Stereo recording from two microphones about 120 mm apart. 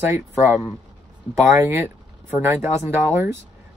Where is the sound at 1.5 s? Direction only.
20° right (ahead or behind).